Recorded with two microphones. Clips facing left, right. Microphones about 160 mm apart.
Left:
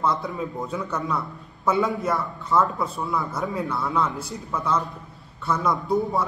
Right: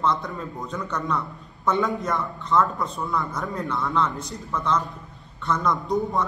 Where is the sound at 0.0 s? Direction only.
5° left (ahead or behind).